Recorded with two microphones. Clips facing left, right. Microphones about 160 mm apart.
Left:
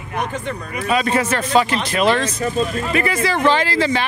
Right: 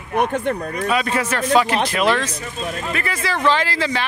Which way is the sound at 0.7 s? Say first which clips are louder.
Left 2 dB; 10° left (ahead or behind).